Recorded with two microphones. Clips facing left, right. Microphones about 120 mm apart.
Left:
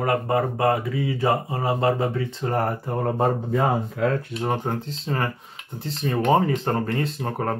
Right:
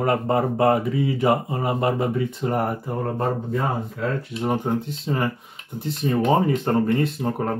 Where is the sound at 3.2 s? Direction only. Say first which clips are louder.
Left 4 dB; 70° left (ahead or behind).